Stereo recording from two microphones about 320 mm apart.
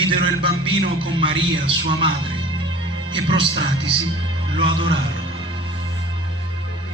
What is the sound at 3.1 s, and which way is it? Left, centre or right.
Speech, centre.